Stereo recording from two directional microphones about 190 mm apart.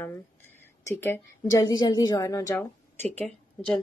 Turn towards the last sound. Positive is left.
turn(degrees=5)  # may be behind; listen again after turning